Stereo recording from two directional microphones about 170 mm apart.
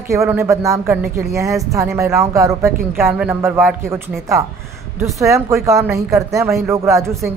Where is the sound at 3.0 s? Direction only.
5° right (ahead or behind).